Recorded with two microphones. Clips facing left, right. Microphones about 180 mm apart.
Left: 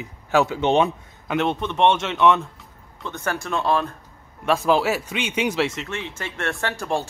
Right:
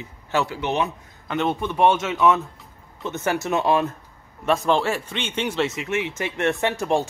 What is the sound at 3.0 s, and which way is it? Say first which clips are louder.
Speech: right 3 dB; 20° right (ahead or behind).